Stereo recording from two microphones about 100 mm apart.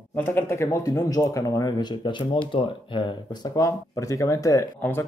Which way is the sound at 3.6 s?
35° left (ahead or behind).